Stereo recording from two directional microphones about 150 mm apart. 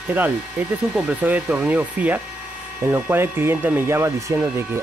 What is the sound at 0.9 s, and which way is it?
Speech, 10° right (ahead or behind).